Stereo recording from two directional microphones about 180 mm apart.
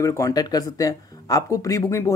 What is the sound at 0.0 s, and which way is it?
Speech, 15° left (ahead or behind).